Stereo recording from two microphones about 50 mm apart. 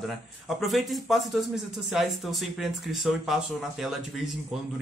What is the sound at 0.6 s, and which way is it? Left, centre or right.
A man's voice, centre.